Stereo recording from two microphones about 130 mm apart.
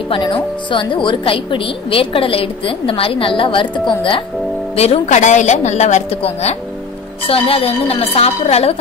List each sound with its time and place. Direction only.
0.1 s a woman's voice: 40° left (ahead or behind)
4.7 s a woman's voice: 55° left (ahead or behind)